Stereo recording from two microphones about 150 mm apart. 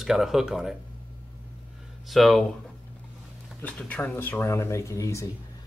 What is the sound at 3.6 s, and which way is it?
Speech, 10° left (ahead or behind).